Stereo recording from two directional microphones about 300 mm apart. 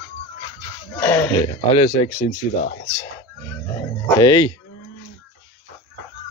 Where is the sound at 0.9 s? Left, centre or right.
Centre.